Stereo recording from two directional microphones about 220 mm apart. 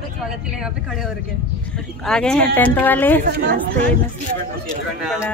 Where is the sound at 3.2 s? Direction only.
45° right (ahead or behind).